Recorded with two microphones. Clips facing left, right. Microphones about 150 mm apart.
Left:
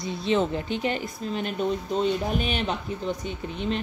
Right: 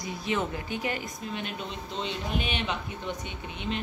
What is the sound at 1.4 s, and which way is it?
Speech, 45° left (ahead or behind).